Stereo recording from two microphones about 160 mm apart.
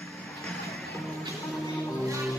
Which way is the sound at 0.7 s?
Centre (ahead or behind).